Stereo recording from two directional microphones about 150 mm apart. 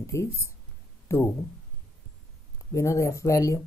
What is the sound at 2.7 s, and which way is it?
Speech, 20° left (ahead or behind).